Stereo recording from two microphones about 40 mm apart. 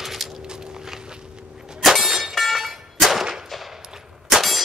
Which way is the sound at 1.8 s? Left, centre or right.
Centre.